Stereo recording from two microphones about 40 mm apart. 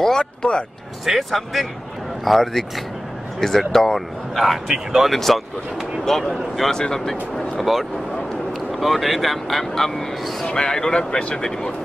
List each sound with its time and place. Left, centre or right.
0.0 s speech: centre
1.0 s speech: centre
4.6 s speech: centre
6.0 s speech: centre